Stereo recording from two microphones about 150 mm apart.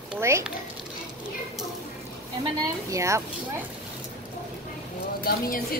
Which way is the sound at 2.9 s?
20° right (ahead or behind).